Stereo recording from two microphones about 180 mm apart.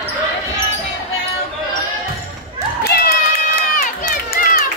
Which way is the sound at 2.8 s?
60° left (ahead or behind).